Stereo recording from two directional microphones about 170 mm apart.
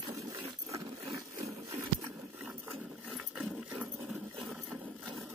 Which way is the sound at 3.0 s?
Centre (ahead or behind).